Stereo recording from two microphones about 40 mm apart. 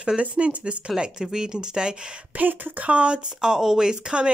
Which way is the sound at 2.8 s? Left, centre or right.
Right.